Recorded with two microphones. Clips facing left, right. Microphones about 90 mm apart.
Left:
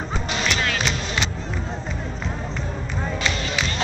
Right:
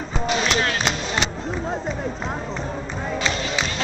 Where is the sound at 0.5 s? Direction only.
35° right (ahead or behind).